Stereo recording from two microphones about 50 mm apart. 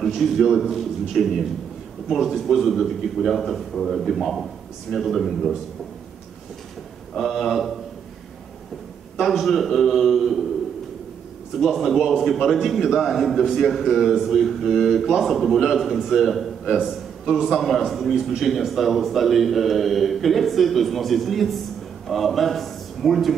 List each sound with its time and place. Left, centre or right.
0.0 s a man's voice: centre
7.2 s a man's voice: centre
9.2 s a man's voice: centre
11.5 s a man's voice: centre